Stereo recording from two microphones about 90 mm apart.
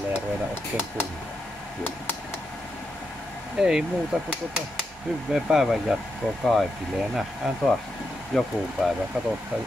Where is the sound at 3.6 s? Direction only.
10° right (ahead or behind).